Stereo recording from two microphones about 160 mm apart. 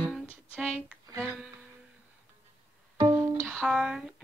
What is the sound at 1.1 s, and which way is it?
Music, centre (ahead or behind).